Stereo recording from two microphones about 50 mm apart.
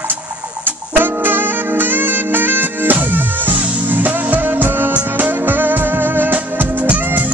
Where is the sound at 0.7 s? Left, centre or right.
Right.